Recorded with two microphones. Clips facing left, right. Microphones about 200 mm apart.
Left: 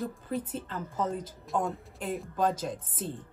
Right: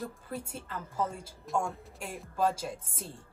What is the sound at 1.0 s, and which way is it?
A woman's voice, 10° right (ahead or behind).